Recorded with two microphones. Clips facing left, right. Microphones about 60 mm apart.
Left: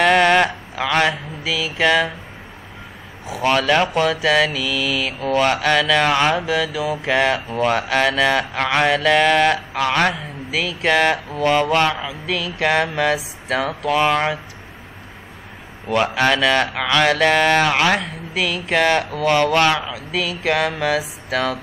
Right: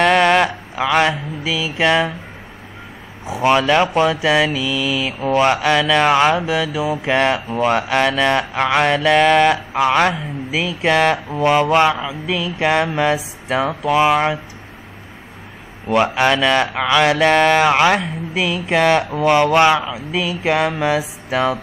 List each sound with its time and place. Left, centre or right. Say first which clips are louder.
0.0 s a sound: right 1 dB; centre
3.3 s speech: right 3 dB; centre
5.7 s speech: right 2 dB; centre
7.2 s speech: right 1 dB; centre
7.4 s speech: right 2 dB; centre
15.9 s speech: right 2 dB; centre
17.6 s a woman's voice: right 4 dB; right